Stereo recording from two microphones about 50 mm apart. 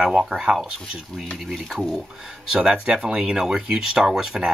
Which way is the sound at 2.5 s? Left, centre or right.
Centre.